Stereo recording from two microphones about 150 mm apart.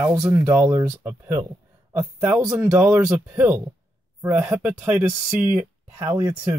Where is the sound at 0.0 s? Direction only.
15° right (ahead or behind).